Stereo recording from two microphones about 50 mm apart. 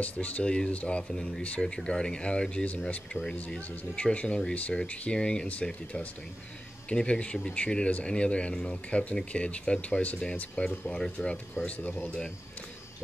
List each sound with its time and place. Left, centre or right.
0.0 s speech: left